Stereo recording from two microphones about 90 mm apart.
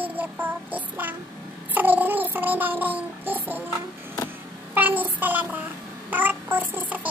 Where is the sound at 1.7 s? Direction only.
20° right (ahead or behind).